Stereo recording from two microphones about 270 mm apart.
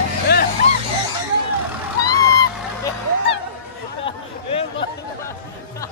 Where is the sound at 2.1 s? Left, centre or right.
Right.